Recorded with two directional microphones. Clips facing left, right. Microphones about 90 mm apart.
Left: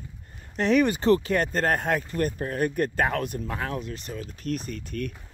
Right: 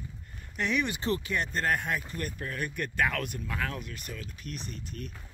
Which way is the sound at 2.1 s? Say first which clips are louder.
Left 9 dB; 35° left (ahead or behind).